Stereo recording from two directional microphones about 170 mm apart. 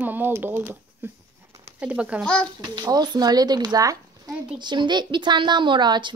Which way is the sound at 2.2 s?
5° left (ahead or behind).